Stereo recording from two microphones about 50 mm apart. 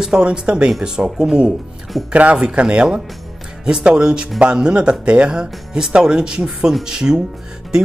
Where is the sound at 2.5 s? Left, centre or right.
Centre.